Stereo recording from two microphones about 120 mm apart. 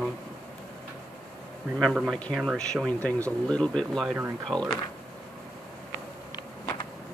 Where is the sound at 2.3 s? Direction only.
Centre (ahead or behind).